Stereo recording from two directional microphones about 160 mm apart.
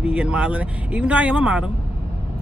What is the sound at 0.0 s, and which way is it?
Speech, 10° right (ahead or behind).